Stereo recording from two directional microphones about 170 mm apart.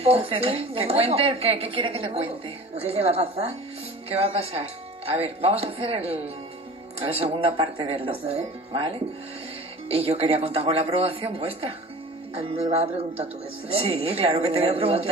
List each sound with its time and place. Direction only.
0.0 s speech: 35° right (ahead or behind)